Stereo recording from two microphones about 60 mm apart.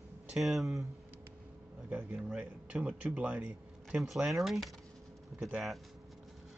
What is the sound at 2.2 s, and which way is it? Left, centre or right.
Speech, right.